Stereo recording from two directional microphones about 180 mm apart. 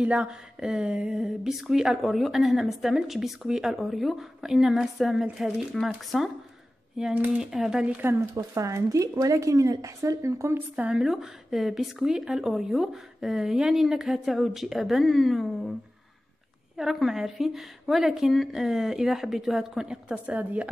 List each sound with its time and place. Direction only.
0.0 s speech: 5° right (ahead or behind)
10.8 s speech: 5° right (ahead or behind)
16.7 s speech: centre (ahead or behind)